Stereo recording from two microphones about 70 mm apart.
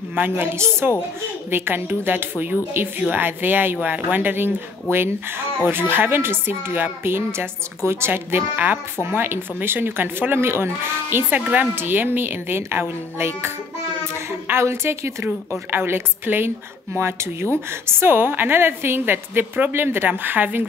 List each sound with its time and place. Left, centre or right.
0.1 s a woman's voice: right
0.6 s a woman's voice: right
5.7 s a woman's voice: right